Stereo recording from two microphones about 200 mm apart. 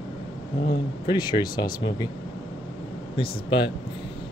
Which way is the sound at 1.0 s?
20° left (ahead or behind).